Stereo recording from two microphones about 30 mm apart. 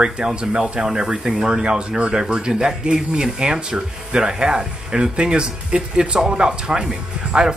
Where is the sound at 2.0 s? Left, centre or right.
Right.